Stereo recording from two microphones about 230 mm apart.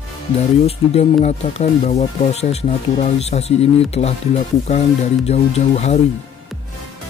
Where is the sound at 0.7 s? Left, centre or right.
Left.